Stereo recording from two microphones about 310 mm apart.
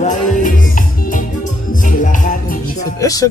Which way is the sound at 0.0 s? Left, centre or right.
Left.